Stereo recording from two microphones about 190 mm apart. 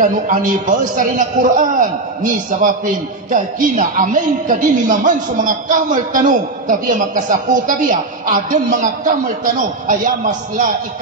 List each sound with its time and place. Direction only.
0.0 s a man's voice: 45° right (ahead or behind)